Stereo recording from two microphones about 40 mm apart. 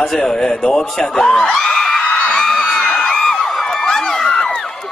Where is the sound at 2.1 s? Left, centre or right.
Centre.